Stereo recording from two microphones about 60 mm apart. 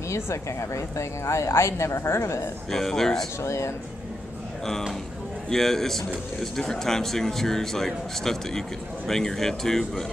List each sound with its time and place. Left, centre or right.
0.1 s a woman's voice: left
2.7 s speech: centre
3.4 s speech: left
5.5 s speech: centre